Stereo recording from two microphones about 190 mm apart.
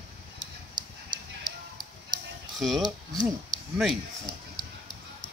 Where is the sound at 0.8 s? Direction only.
25° right (ahead or behind).